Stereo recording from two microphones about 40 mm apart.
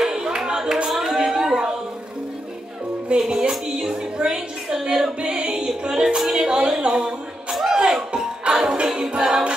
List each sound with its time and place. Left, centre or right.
0.0 s a sound: centre
3.2 s a sound: centre
4.7 s music: centre
5.2 s music: right
5.7 s a woman's voice: centre
7.7 s music: centre